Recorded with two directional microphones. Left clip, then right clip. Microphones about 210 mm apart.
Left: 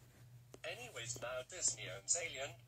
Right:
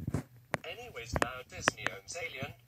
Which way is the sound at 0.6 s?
50° right (ahead or behind).